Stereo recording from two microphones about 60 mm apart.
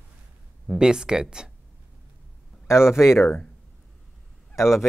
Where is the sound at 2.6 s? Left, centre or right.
Left.